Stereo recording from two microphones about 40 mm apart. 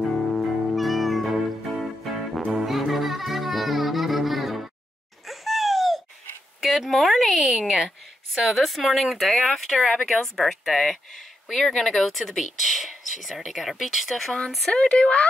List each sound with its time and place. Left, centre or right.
0.0 s music: centre
5.3 s a sound: centre
6.6 s speech: centre
7.6 s a woman's voice: centre
8.5 s speech: centre
14.7 s speech: left